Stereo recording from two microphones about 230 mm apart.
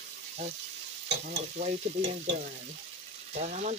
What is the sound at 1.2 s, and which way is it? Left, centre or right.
Stir, right.